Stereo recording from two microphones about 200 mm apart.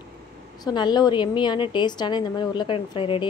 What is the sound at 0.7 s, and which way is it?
A woman's voice, 20° left (ahead or behind).